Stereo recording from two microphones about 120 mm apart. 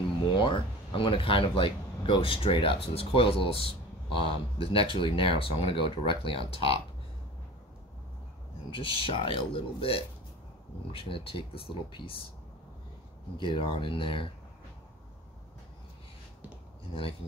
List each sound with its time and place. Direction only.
0.3 s speech: 40° left (ahead or behind)
8.6 s speech: 45° left (ahead or behind)
13.4 s speech: 45° left (ahead or behind)